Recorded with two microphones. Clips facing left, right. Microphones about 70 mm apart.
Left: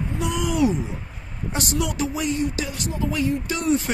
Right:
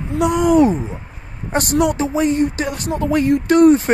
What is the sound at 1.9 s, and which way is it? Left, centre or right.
Speech, right.